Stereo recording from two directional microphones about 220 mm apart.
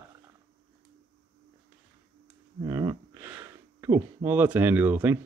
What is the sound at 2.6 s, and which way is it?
Speech, 15° right (ahead or behind).